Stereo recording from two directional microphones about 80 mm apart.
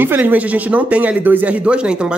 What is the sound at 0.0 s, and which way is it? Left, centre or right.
Speech, right.